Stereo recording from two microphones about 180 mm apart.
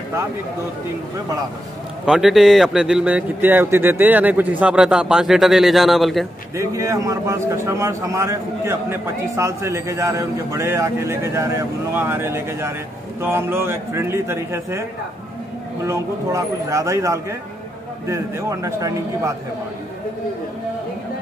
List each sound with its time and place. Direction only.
2.0 s a man's voice: 5° right (ahead or behind)
6.5 s a man's voice: 15° right (ahead or behind)